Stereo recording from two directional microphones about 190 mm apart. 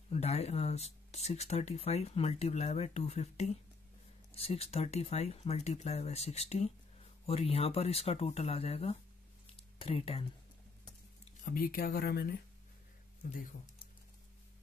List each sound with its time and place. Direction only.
0.1 s speech: 35° left (ahead or behind)
11.4 s speech: 50° left (ahead or behind)